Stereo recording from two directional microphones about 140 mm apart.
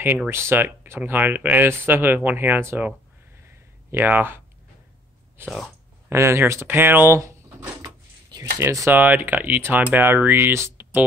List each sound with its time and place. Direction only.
0.3 s speech: 15° right (ahead or behind)
3.4 s a sound: 15° right (ahead or behind)
5.4 s speech: 15° right (ahead or behind)